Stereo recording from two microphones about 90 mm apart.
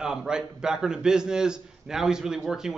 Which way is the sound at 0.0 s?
5° right (ahead or behind).